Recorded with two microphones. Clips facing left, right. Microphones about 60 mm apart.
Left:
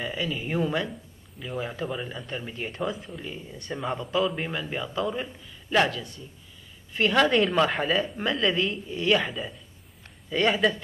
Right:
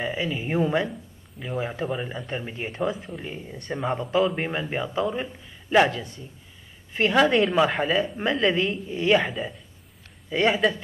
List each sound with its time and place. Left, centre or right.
0.0 s speech: right
2.7 s speech: centre
3.2 s speech: right
7.2 s speech: centre
8.2 s speech: right; by 10.8 s centre